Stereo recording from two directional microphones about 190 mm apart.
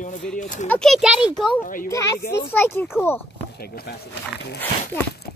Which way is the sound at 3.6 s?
55° left (ahead or behind).